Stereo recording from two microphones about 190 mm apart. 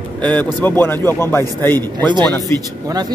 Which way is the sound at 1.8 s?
25° right (ahead or behind).